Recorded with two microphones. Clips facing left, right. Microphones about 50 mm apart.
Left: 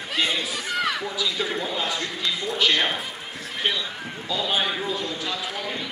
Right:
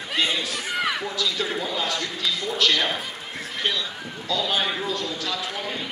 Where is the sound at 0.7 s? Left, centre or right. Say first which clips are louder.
Even; centre.